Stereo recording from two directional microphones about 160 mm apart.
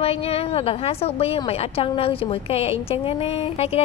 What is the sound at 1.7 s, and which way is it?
A woman's voice, 35° left (ahead or behind).